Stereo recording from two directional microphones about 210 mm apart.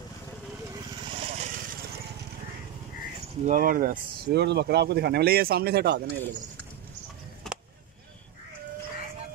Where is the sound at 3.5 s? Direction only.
40° right (ahead or behind).